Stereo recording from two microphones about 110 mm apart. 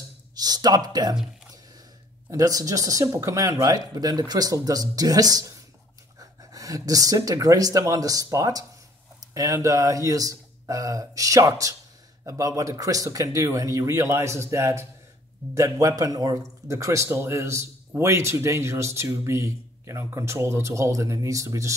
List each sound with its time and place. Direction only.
0.4 s speech: 35° right (ahead or behind)
2.3 s speech: 35° right (ahead or behind)